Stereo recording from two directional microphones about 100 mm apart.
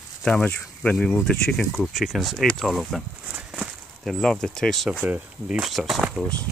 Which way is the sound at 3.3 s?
10° right (ahead or behind).